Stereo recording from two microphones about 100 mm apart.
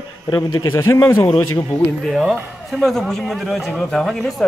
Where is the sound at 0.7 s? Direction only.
25° left (ahead or behind).